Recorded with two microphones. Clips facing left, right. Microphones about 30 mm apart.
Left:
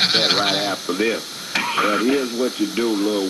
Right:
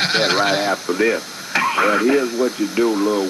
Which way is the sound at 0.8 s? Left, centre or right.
Centre.